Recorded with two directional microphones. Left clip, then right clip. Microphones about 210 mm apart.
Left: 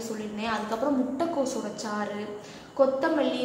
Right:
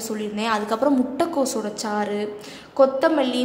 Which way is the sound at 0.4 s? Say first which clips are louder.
Right 7 dB; 50° right (ahead or behind).